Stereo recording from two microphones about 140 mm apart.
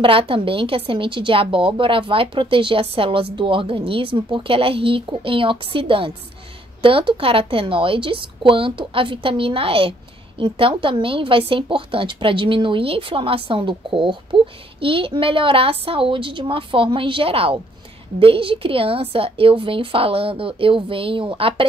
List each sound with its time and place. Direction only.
0.0 s a woman's voice: 40° right (ahead or behind)